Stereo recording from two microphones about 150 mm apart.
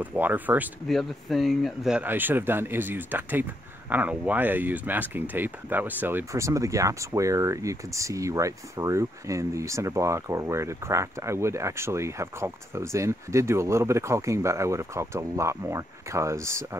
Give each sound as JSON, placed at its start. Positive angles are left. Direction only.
{"t": 0.0, "sound": "speech", "side_deg": -10}
{"t": 0.8, "sound": "speech", "side_deg": 0}